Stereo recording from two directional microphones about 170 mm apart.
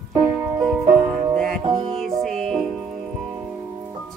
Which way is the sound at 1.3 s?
5° left (ahead or behind).